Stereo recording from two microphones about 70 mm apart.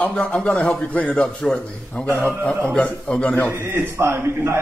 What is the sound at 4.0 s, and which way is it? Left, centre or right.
Speech, right.